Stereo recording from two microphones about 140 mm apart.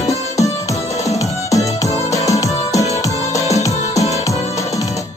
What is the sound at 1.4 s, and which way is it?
Music, 25° left (ahead or behind).